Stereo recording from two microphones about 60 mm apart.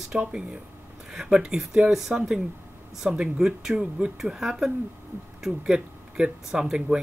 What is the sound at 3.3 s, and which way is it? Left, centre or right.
Speech, centre.